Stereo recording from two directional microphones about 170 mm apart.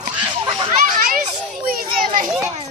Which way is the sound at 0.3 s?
25° right (ahead or behind).